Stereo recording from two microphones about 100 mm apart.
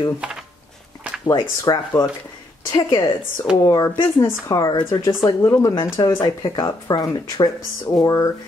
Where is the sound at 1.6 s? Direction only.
35° left (ahead or behind).